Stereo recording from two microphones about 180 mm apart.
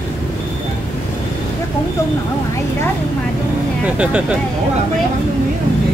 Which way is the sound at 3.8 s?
5° right (ahead or behind).